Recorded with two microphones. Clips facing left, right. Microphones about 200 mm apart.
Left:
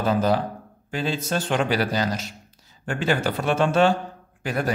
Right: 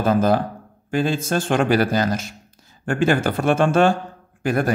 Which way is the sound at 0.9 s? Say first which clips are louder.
Right 5 dB; 50° right (ahead or behind).